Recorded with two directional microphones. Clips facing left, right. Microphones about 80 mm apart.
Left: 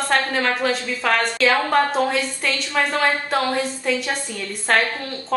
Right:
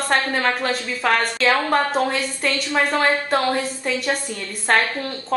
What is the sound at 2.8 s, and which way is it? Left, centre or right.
Speech, centre.